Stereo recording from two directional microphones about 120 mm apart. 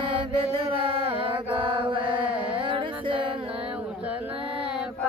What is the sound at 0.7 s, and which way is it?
Mantra, 50° right (ahead or behind).